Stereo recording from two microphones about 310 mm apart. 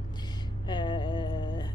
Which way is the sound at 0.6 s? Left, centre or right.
Centre.